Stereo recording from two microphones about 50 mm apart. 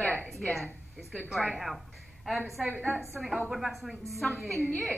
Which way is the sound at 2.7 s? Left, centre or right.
Centre.